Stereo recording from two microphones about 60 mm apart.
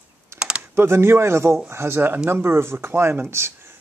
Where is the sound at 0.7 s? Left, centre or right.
Right.